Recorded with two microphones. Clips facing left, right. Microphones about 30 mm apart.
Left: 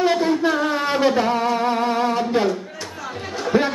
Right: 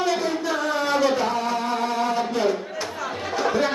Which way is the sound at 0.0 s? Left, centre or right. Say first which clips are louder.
Left 5 dB; left.